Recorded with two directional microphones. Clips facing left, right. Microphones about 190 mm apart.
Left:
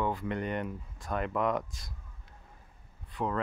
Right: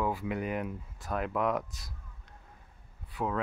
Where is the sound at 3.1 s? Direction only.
5° right (ahead or behind).